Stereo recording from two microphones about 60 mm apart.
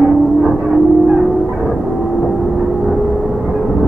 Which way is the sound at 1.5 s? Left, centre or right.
Centre.